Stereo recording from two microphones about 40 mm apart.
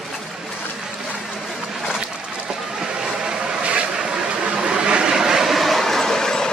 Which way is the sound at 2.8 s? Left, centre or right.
Centre.